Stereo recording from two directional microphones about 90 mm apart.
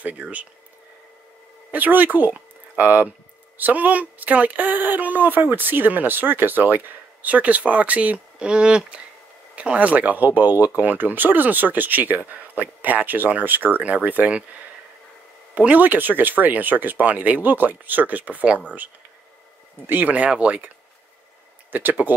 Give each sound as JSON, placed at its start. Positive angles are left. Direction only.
{"t": 0.0, "sound": "speech", "side_deg": -15}
{"t": 1.7, "sound": "speech", "side_deg": -20}
{"t": 15.5, "sound": "speech", "side_deg": -15}
{"t": 19.9, "sound": "speech", "side_deg": -20}
{"t": 21.7, "sound": "speech", "side_deg": -20}